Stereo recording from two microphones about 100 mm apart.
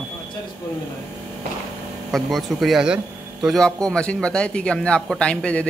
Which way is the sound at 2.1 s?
Centre (ahead or behind).